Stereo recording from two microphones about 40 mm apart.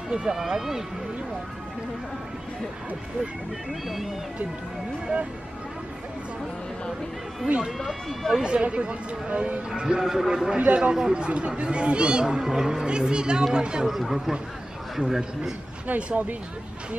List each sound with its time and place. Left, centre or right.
0.1 s speech: centre
0.4 s speech: centre
7.5 s speech: right
9.8 s speech: centre
10.3 s speech: right
11.2 s speech: right
13.8 s speech: centre
16.0 s speech: right